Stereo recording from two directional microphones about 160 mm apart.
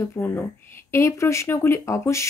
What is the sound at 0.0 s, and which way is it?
Speech, 15° left (ahead or behind).